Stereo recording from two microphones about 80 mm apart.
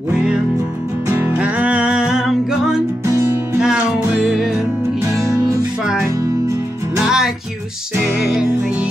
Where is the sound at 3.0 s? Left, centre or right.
Right.